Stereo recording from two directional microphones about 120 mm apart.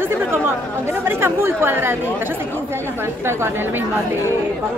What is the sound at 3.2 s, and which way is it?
Speech, 20° right (ahead or behind).